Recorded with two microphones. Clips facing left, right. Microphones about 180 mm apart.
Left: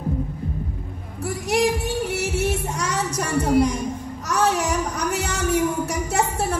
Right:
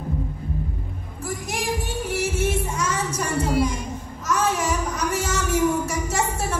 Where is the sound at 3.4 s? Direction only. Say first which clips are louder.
Left 5 dB; 55° left (ahead or behind).